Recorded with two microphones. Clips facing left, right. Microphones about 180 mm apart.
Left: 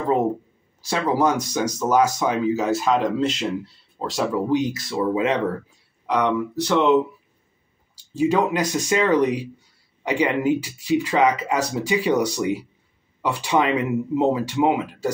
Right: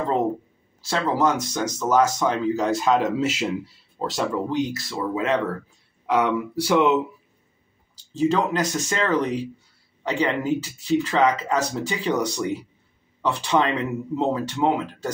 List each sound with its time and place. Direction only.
0.7 s speech: 15° left (ahead or behind)
4.7 s speech: 15° left (ahead or behind)
6.0 s speech: 5° right (ahead or behind)
7.9 s speech: 10° left (ahead or behind)